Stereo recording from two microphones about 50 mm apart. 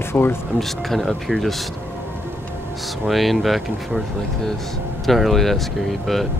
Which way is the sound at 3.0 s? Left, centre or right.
Centre.